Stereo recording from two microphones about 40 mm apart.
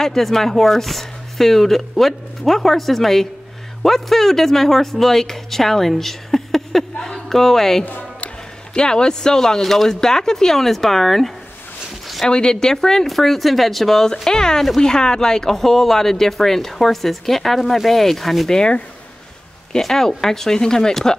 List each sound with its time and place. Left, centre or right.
0.0 s speech: centre
8.7 s speech: centre
12.3 s speech: centre
18.5 s speech: centre